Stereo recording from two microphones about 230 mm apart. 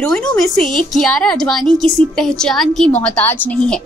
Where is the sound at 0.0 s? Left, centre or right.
Centre.